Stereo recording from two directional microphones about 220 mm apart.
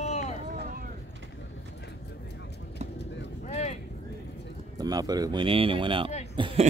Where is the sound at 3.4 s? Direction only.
30° left (ahead or behind).